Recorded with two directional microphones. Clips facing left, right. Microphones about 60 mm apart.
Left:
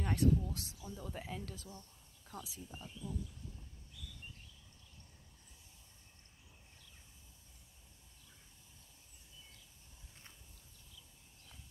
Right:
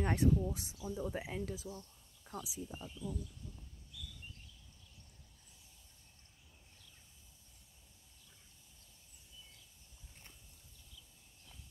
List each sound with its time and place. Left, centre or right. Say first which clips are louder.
0.0 s speech: right 1 dB; right; by 3.2 s centre